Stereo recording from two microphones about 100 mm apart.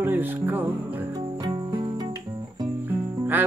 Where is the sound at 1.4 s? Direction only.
50° right (ahead or behind).